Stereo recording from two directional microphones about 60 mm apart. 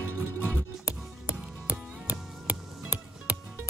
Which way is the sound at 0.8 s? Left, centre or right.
Right.